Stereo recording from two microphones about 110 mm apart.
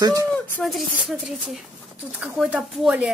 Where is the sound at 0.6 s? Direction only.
Centre (ahead or behind).